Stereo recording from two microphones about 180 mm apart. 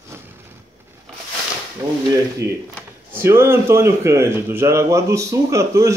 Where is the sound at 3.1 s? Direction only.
15° right (ahead or behind).